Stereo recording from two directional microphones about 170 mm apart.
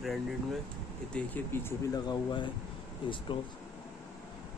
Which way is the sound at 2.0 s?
25° left (ahead or behind).